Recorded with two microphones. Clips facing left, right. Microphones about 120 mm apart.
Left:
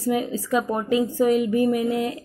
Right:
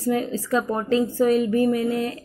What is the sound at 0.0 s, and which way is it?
Speech, 15° left (ahead or behind).